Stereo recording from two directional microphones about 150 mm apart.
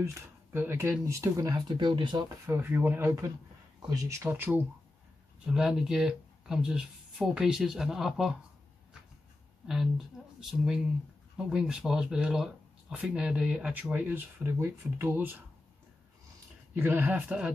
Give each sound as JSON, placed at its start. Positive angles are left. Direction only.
{"t": 0.0, "sound": "speech", "side_deg": -15}
{"t": 2.4, "sound": "speech", "side_deg": -15}
{"t": 9.7, "sound": "speech", "side_deg": -5}
{"t": 11.3, "sound": "speech", "side_deg": -5}
{"t": 16.7, "sound": "speech", "side_deg": -15}